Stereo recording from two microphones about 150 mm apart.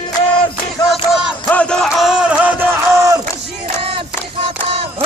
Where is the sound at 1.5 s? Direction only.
5° left (ahead or behind); by 3.2 s 20° right (ahead or behind).